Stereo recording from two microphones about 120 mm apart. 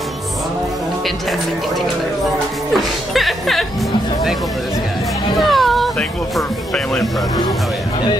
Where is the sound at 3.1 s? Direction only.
Centre (ahead or behind).